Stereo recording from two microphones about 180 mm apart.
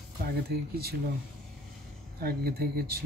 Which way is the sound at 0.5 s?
60° right (ahead or behind).